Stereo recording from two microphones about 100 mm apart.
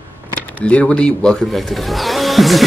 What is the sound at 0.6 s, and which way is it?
Speech, 10° left (ahead or behind).